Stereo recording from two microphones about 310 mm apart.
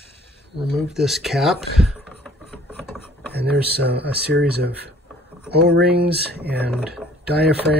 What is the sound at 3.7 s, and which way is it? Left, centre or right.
Speech, right.